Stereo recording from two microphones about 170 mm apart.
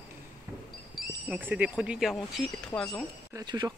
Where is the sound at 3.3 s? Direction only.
25° right (ahead or behind).